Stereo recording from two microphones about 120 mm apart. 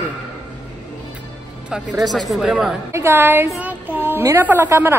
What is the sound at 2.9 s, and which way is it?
A woman's voice, 20° right (ahead or behind).